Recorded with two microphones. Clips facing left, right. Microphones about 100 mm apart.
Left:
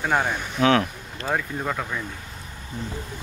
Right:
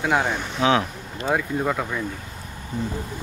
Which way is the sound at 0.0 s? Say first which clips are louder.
Right 1 dB; centre (ahead or behind).